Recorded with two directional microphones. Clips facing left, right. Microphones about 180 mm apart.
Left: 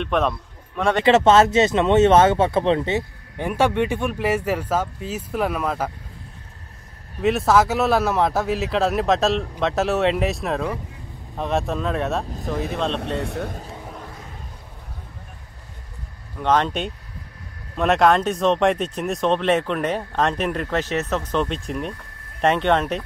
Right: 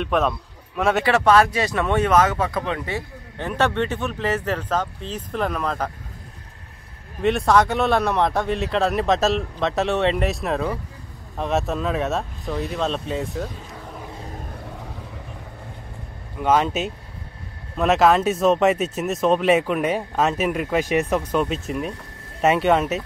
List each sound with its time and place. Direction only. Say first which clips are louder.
0.0 s a man's voice: even; centre (ahead or behind)
1.0 s speech: left 4 dB; 25° left (ahead or behind)
3.3 s speech: left 2 dB; 10° left (ahead or behind)
7.2 s speech: even; centre (ahead or behind)
13.0 s speech: left 1 dB; 75° left (ahead or behind)
16.3 s speech: right 1 dB; 5° right (ahead or behind)